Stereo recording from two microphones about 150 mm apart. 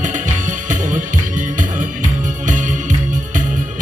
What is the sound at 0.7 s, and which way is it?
Music, 60° right (ahead or behind).